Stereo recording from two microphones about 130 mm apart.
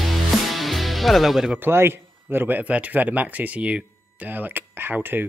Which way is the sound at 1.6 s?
20° right (ahead or behind).